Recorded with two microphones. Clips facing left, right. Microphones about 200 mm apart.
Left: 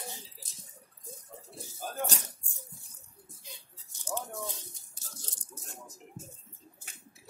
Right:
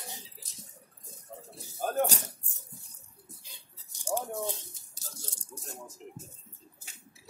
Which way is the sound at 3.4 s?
30° right (ahead or behind).